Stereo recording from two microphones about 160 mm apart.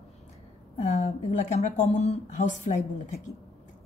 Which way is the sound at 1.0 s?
50° left (ahead or behind).